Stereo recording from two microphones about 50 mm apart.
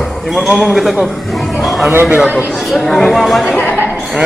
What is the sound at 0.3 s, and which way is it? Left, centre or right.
Speech, centre.